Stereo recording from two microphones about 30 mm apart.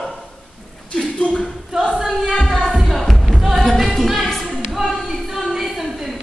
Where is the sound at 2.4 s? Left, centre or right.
Centre.